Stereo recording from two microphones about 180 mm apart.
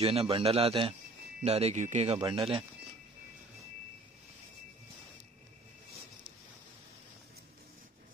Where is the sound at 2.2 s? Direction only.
20° right (ahead or behind).